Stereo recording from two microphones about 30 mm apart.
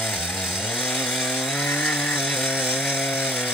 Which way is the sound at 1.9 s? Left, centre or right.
Left.